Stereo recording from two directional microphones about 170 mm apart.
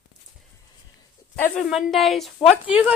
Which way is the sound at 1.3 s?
10° left (ahead or behind).